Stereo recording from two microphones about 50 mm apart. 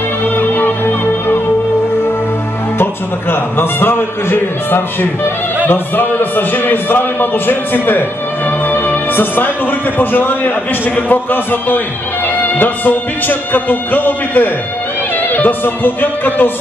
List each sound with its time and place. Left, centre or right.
0.2 s music: left
2.8 s a man's voice: left